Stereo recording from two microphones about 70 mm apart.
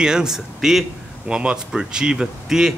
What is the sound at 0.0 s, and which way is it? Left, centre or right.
Speech, centre.